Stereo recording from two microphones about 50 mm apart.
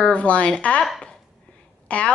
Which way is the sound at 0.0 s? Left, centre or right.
Left.